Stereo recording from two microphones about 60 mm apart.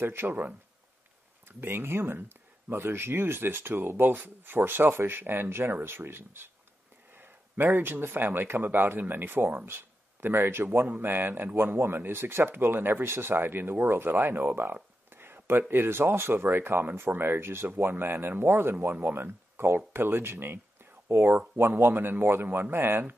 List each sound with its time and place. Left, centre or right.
0.0 s speech: right
1.6 s a man's voice: right